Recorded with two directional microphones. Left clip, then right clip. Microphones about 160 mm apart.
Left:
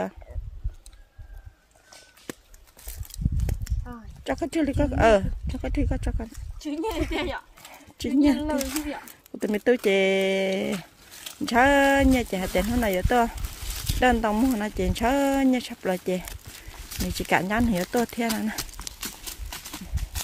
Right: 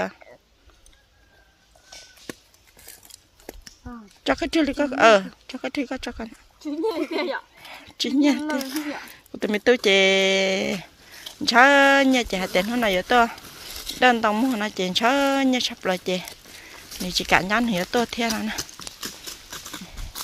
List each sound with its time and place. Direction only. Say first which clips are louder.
4.2 s speech: right 5 dB; 25° left (ahead or behind)
7.2 s speech: right 3 dB; 35° left (ahead or behind)
7.7 s a sound: right 2 dB; 25° left (ahead or behind)
8.5 s speech: right 1 dB; 25° left (ahead or behind)
14.4 s speech: right 1 dB; 15° left (ahead or behind)
14.7 s speech: right 4 dB; 30° left (ahead or behind)
19.0 s horse: right 3 dB; 25° left (ahead or behind)